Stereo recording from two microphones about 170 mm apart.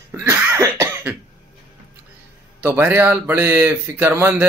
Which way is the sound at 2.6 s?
10° right (ahead or behind).